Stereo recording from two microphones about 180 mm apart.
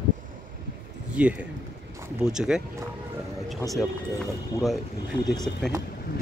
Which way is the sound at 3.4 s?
Centre (ahead or behind).